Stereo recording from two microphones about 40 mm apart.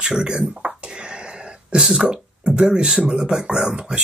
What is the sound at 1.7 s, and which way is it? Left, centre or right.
Speech, centre.